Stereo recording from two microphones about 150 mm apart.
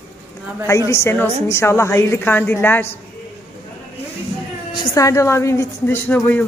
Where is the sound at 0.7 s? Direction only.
20° left (ahead or behind).